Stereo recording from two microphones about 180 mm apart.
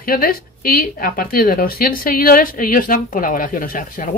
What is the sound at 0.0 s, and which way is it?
Speech, 55° left (ahead or behind).